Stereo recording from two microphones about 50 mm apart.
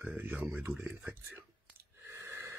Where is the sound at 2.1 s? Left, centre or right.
Right.